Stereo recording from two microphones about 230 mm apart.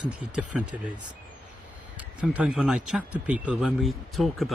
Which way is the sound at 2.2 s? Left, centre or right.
Centre.